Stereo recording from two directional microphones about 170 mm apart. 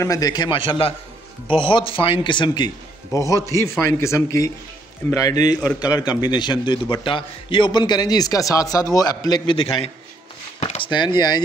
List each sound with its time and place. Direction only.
0.0 s a man's voice: 20° left (ahead or behind)